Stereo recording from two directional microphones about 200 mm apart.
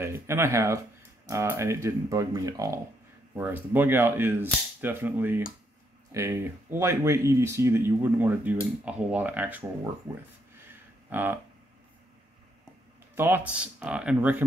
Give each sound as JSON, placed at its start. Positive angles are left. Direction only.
{"t": 0.0, "sound": "speech", "side_deg": -15}
{"t": 10.7, "sound": "a sound", "side_deg": -10}
{"t": 13.1, "sound": "speech", "side_deg": -10}